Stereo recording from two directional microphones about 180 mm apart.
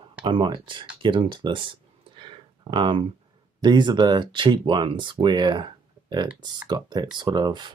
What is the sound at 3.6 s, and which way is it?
Speech, 25° right (ahead or behind).